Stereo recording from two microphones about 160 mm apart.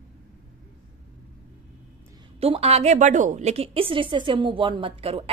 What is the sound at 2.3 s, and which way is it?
Speech, 40° right (ahead or behind).